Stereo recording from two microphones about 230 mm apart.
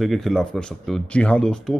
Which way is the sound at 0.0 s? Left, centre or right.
Centre.